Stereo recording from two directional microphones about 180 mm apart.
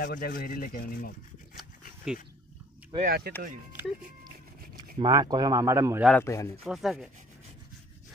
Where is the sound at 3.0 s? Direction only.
60° right (ahead or behind).